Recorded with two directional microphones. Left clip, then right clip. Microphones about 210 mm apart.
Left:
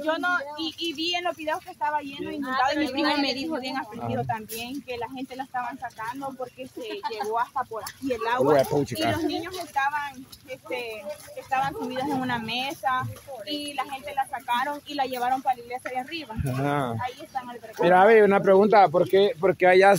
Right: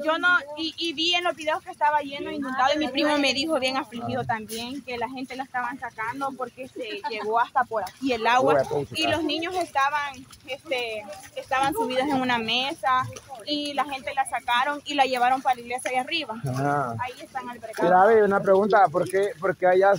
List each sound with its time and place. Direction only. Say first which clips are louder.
0.0 s speech: right 4 dB; 5° right (ahead or behind); by 3.8 s 20° right (ahead or behind)
4.1 s speech: right 1 dB; 10° right (ahead or behind)
5.5 s speech: right 2 dB; centre (ahead or behind)
7.5 s speech: right 6 dB; 35° right (ahead or behind); by 13.0 s 15° right (ahead or behind)
13.5 s speech: right 4 dB; 25° right (ahead or behind)
16.4 s speech: even; 15° left (ahead or behind)
17.8 s speech: left 1 dB; 25° left (ahead or behind)